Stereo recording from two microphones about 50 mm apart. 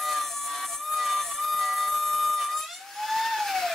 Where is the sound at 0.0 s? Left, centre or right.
Centre.